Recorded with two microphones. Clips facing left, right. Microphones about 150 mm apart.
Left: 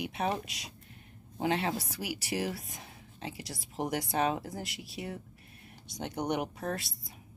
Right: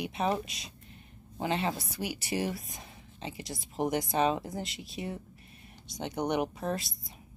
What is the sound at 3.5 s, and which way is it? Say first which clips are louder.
Speech: right 4 dB; 15° right (ahead or behind).